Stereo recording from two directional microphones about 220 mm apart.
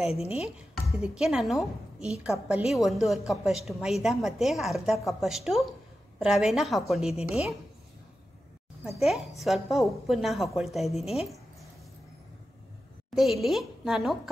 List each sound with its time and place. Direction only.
0.0 s speech: 25° left (ahead or behind)
0.7 s a woman's voice: centre (ahead or behind)
9.4 s a woman's voice: centre (ahead or behind)
13.1 s a woman's voice: centre (ahead or behind)